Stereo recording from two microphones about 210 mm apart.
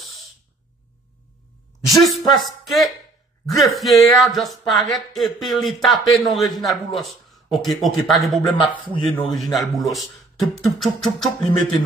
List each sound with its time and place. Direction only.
1.9 s speech: centre (ahead or behind)
8.4 s a man's voice: 20° left (ahead or behind)
9.1 s speech: centre (ahead or behind)